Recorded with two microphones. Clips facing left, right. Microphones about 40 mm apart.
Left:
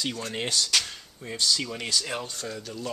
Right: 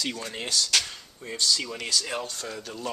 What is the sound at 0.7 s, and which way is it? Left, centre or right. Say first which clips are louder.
Speech: even; centre.